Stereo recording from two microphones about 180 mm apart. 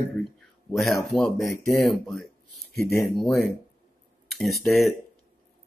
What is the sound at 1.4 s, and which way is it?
Speech, 15° left (ahead or behind).